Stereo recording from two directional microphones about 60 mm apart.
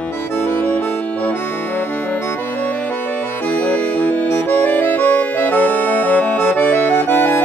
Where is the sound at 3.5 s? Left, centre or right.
Left.